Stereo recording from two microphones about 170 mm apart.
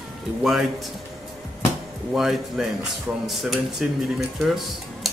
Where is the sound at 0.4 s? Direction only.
Centre (ahead or behind).